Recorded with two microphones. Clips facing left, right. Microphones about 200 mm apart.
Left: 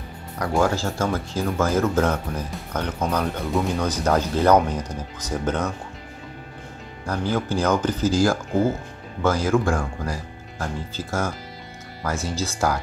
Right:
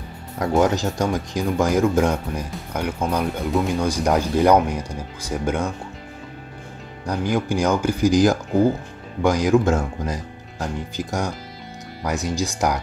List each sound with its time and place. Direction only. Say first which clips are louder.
0.4 s speech: right 3 dB; 20° right (ahead or behind)
7.1 s speech: right 2 dB; 15° right (ahead or behind)